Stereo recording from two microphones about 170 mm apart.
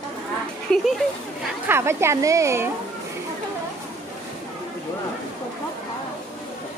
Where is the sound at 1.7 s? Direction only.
15° right (ahead or behind).